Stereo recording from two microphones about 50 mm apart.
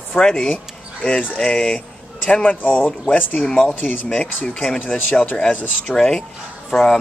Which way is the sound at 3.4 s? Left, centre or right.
Centre.